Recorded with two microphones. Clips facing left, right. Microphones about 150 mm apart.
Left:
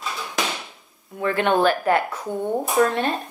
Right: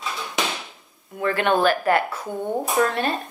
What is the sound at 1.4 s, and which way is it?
Speech, 20° left (ahead or behind).